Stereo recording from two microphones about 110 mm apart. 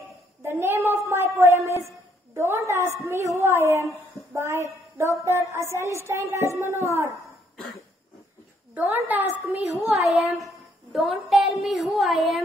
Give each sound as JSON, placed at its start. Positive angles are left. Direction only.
{"t": 0.4, "sound": "a sound", "side_deg": -20}
{"t": 1.0, "sound": "a woman's voice", "side_deg": -25}
{"t": 7.5, "sound": "cough", "side_deg": 5}
{"t": 8.7, "sound": "a woman's voice", "side_deg": -15}
{"t": 9.8, "sound": "child singing", "side_deg": 0}
{"t": 11.6, "sound": "music", "side_deg": 0}